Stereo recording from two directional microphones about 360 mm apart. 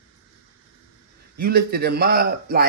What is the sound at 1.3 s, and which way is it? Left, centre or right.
Speech, right.